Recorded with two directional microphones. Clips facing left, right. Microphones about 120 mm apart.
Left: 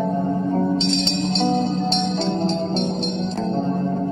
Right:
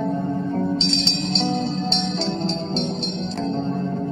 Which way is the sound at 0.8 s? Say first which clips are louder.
Left 3 dB; 50° left (ahead or behind).